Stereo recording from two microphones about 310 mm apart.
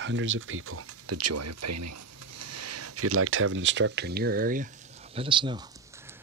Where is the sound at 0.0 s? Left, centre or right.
Right.